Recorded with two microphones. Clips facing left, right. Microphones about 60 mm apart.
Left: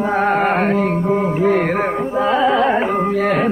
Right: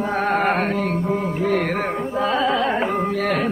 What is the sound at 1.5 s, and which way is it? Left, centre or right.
Carnatic music, centre.